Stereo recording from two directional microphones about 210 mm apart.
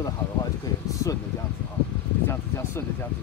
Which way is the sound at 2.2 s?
10° left (ahead or behind).